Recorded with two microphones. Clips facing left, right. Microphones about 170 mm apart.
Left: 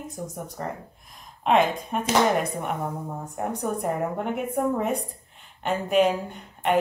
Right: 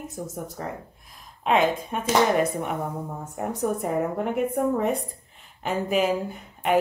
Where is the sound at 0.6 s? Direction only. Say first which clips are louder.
Left 1 dB; centre (ahead or behind).